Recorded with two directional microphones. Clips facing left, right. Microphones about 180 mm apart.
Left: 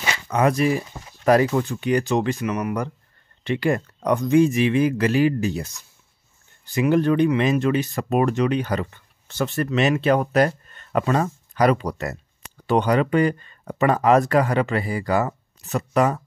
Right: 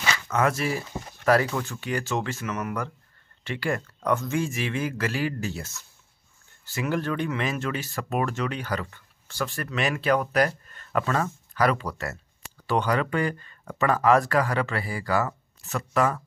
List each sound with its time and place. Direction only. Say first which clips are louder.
0.1 s speech: left 5 dB; 15° left (ahead or behind)